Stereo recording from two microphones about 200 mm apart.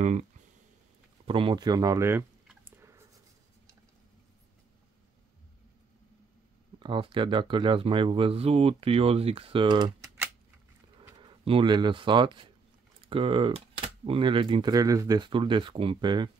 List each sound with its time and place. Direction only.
0.0 s speech: 35° right (ahead or behind)
1.2 s clicking: 25° right (ahead or behind)
6.8 s speech: 25° right (ahead or behind)
11.1 s speech: 25° right (ahead or behind)